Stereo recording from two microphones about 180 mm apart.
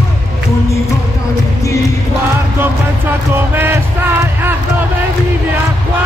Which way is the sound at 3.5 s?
10° right (ahead or behind).